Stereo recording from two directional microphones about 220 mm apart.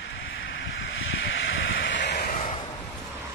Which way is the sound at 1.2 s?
55° left (ahead or behind).